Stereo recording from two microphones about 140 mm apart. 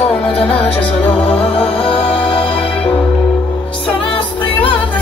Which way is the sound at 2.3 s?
40° left (ahead or behind).